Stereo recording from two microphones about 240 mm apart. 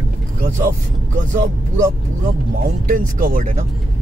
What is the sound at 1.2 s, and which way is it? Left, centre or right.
Speech, right.